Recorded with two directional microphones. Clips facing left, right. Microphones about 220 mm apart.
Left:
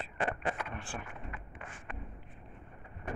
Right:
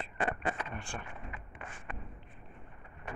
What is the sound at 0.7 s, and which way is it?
Speech, centre (ahead or behind).